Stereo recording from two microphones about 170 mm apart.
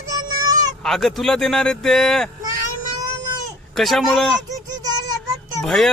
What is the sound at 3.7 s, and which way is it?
Speech, centre (ahead or behind).